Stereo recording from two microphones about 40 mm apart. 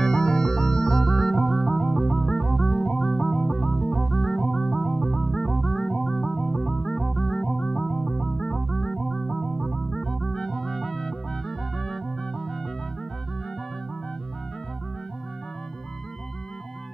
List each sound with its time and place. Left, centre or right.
0.0 s music: centre